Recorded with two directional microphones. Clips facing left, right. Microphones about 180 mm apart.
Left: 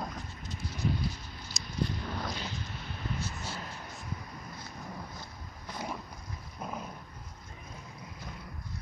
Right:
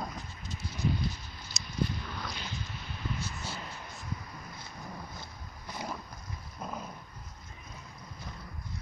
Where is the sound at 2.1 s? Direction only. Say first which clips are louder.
Left 4 dB; 40° left (ahead or behind).